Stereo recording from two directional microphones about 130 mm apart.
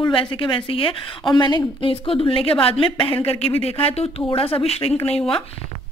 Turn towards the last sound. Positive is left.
turn(degrees=45)  # may be behind; listen again after turning